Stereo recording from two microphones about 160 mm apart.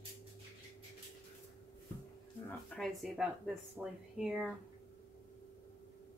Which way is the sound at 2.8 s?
Centre (ahead or behind).